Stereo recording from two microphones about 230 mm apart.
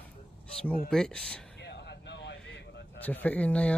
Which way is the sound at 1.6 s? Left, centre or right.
Left.